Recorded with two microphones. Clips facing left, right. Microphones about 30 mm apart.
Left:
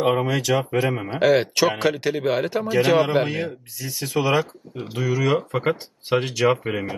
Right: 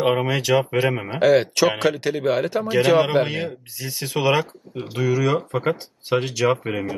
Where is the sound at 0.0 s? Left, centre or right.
Right.